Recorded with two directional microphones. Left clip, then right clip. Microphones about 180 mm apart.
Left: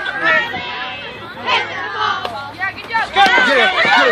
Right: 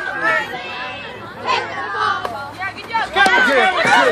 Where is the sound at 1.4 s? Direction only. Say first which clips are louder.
Left 2 dB; 35° right (ahead or behind).